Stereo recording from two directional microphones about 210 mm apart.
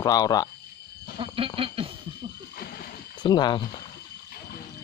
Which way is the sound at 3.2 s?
20° left (ahead or behind).